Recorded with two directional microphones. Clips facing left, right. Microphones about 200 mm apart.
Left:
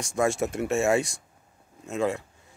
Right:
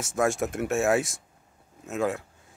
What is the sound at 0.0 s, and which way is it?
Speech, centre (ahead or behind).